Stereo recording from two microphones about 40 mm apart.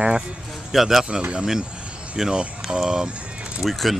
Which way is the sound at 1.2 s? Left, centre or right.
Right.